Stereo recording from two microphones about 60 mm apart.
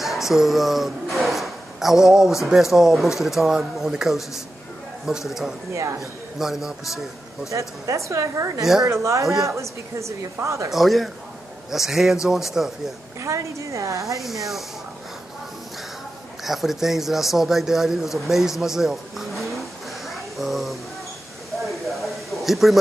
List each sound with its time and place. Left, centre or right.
0.0 s speech: centre
5.7 s a woman's voice: right
5.9 s speech: centre
7.5 s a woman's voice: right
9.2 s speech: centre
9.5 s a woman's voice: right
10.7 s speech: centre
13.2 s a woman's voice: right
14.2 s speech: centre
16.4 s speech: centre
20.1 s a sound: centre